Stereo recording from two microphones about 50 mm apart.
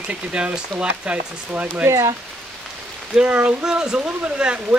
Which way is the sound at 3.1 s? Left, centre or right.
Right.